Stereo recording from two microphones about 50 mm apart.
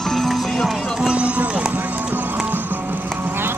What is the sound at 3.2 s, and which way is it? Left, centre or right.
Vehicle, right.